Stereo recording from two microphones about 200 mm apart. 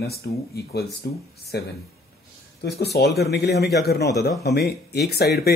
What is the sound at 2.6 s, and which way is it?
Speech, 55° left (ahead or behind).